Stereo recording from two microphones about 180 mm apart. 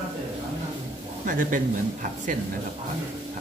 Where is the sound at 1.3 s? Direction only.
45° right (ahead or behind).